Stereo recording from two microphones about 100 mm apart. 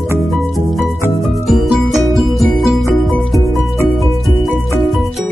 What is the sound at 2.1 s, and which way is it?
Music, centre (ahead or behind).